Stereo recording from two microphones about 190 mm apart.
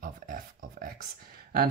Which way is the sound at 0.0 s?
45° right (ahead or behind).